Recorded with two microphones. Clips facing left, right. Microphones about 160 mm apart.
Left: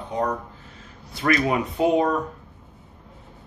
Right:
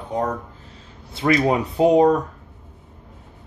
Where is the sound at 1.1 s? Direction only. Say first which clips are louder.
Right 3 dB; 25° right (ahead or behind).